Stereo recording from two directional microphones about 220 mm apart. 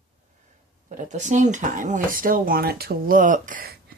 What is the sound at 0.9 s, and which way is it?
Speech, 35° right (ahead or behind).